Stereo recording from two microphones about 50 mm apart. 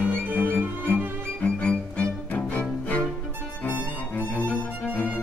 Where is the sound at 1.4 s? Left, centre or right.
Left.